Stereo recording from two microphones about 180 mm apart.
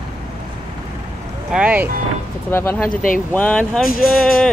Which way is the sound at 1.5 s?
10° right (ahead or behind).